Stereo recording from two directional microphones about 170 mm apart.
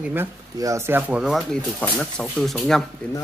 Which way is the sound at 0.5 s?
20° right (ahead or behind).